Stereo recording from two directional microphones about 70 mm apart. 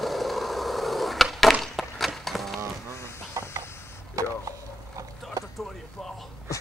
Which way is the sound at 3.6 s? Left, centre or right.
Left.